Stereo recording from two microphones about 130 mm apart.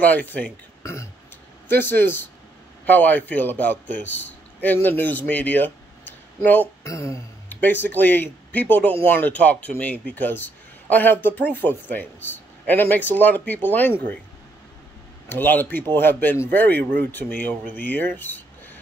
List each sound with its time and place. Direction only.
0.0 s a man's voice: 10° left (ahead or behind)
6.8 s speech: 20° left (ahead or behind)
15.2 s speech: 15° left (ahead or behind)